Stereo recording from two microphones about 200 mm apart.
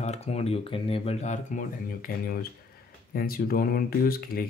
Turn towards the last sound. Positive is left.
turn(degrees=50)  # may be behind; listen again after turning